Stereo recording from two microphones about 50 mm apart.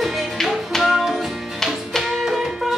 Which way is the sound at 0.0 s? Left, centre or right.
Centre.